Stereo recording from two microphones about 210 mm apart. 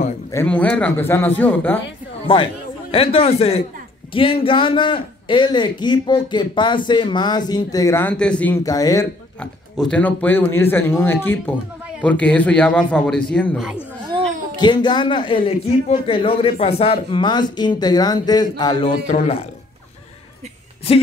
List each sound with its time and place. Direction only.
0.3 s speech: 10° left (ahead or behind)
2.2 s a man's voice: 25° left (ahead or behind)
9.4 s speech: 5° left (ahead or behind)
14.6 s a man's voice: 20° left (ahead or behind)
19.0 s speech: 35° left (ahead or behind)